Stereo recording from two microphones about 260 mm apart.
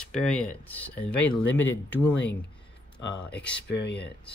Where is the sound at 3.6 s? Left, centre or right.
Left.